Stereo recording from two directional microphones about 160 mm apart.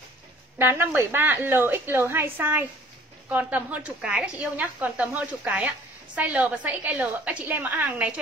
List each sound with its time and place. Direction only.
0.6 s a woman's voice: 15° right (ahead or behind)